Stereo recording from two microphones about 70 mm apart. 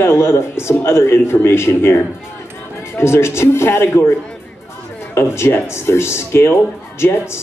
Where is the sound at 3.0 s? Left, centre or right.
Left.